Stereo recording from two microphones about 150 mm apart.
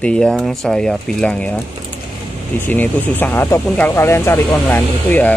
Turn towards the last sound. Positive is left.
turn(degrees=10)  # may be behind; listen again after turning